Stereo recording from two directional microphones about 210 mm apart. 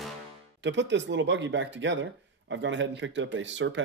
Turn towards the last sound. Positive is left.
turn(degrees=-60)  # may be behind; listen again after turning